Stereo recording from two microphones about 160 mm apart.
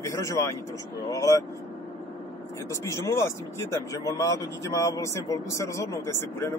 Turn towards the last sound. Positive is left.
turn(degrees=15)  # may be behind; listen again after turning